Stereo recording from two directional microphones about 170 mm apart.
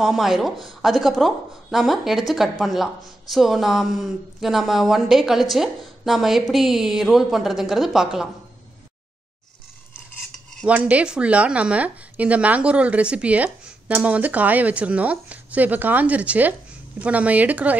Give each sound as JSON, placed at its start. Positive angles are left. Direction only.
{"t": 0.0, "sound": "speech", "side_deg": 0}
{"t": 10.6, "sound": "speech", "side_deg": -10}